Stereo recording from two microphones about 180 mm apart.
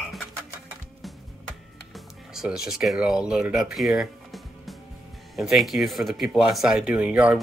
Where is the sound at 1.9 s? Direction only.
Centre (ahead or behind).